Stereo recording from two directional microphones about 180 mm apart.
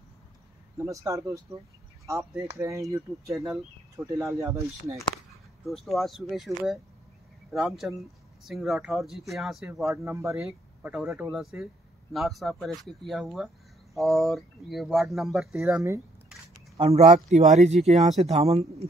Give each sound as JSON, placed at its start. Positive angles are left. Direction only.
{"t": 0.7, "sound": "speech", "side_deg": -15}
{"t": 5.7, "sound": "speech", "side_deg": 0}
{"t": 7.5, "sound": "speech", "side_deg": 0}
{"t": 9.8, "sound": "speech", "side_deg": -15}
{"t": 16.7, "sound": "speech", "side_deg": -35}